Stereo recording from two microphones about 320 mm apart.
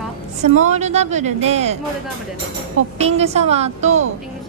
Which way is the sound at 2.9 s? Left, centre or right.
Centre.